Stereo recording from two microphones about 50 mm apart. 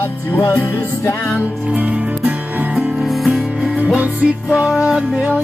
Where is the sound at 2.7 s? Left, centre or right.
Centre.